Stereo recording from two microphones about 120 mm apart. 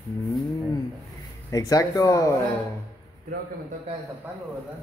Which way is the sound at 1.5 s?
30° left (ahead or behind).